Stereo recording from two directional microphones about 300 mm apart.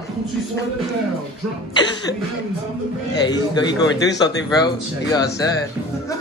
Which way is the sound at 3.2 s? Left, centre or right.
Centre.